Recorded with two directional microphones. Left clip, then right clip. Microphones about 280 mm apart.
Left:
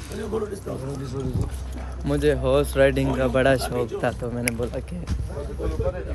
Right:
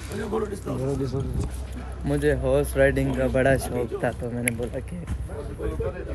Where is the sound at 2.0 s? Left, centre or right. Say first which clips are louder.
Left 2 dB; centre.